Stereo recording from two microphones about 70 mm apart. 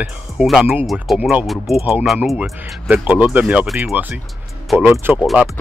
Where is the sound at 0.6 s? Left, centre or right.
Right.